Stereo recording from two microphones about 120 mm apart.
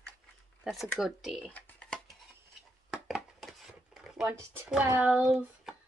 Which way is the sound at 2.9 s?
5° right (ahead or behind).